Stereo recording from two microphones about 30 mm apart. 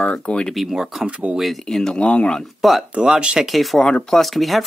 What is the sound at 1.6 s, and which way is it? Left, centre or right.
Speech, centre.